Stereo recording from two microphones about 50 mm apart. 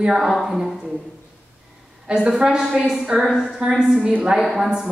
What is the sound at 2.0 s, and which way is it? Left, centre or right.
A woman's voice, centre.